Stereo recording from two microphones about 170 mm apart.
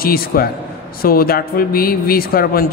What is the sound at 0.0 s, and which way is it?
A man's voice, 60° left (ahead or behind).